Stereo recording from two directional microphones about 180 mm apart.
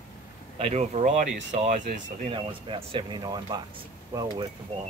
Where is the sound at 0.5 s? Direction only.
35° right (ahead or behind).